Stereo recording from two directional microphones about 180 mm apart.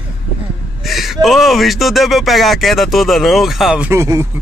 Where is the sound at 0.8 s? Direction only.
Centre (ahead or behind).